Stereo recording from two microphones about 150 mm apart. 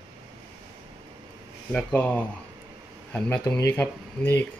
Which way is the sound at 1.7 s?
10° left (ahead or behind).